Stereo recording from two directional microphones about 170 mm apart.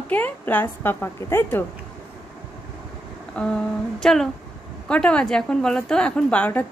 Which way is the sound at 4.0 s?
Centre (ahead or behind).